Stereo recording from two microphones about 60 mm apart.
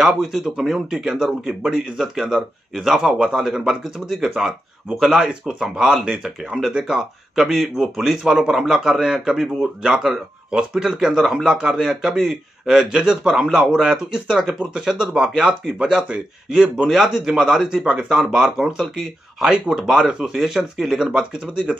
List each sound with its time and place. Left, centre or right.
0.0 s speech: centre
11.4 s speech: centre
11.7 s speech: centre